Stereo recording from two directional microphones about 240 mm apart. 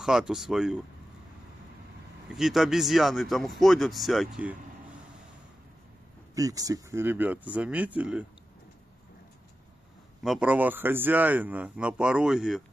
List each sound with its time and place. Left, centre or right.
0.0 s speech: centre
2.3 s speech: centre
6.3 s speech: centre
10.2 s speech: centre